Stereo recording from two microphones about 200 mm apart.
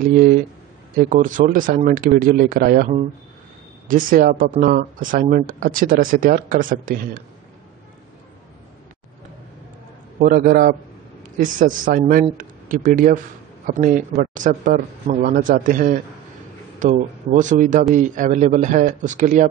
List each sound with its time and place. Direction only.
1.1 s a man's voice: 40° right (ahead or behind)
10.2 s a man's voice: 45° right (ahead or behind)